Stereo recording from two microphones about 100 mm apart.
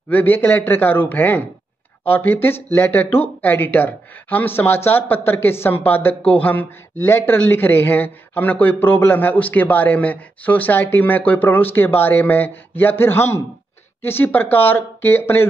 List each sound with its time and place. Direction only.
0.1 s speech: 20° left (ahead or behind)